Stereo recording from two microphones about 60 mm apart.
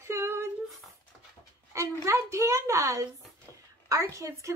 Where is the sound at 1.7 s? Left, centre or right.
Right.